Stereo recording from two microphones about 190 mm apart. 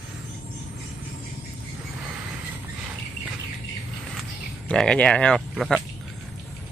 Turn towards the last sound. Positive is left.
turn(degrees=0)  # may be behind; listen again after turning